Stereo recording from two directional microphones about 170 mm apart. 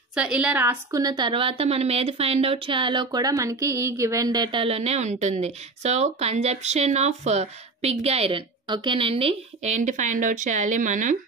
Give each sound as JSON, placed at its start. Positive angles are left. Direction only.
{"t": 0.1, "sound": "a woman's voice", "side_deg": -5}
{"t": 0.9, "sound": "a woman's voice", "side_deg": -25}